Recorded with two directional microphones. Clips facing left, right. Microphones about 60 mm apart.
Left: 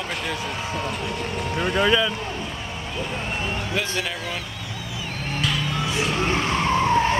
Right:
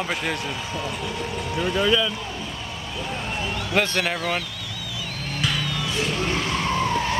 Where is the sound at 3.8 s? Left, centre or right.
Right.